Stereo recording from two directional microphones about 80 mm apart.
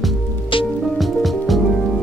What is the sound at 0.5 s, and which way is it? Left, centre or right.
Music, left.